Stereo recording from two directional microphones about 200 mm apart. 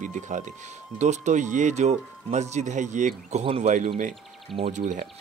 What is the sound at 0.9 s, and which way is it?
Speech, 35° right (ahead or behind).